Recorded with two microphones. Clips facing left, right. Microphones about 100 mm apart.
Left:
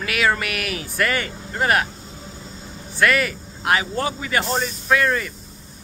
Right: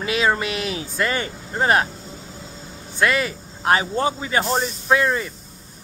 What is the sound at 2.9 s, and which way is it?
Speech, 25° right (ahead or behind).